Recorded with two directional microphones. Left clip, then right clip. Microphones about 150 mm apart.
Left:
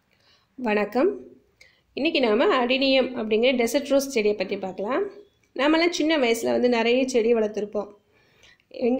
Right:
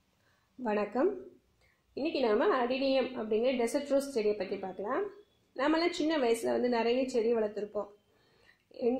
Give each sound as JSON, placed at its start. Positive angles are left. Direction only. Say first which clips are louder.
{"t": 0.6, "sound": "a woman's voice", "louder": "left 8 dB", "side_deg": 15}